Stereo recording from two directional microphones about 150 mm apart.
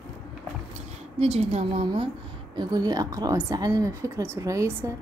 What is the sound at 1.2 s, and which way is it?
Speech, 40° right (ahead or behind).